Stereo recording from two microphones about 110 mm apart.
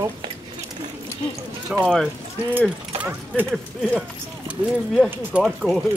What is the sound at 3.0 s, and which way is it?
Speech, 15° right (ahead or behind).